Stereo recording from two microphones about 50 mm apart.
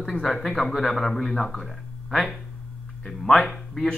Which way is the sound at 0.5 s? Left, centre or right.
Left.